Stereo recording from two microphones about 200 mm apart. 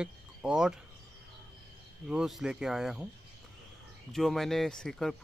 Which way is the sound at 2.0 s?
Centre (ahead or behind).